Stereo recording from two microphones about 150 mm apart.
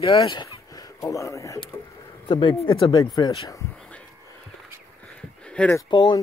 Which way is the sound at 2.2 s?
35° left (ahead or behind).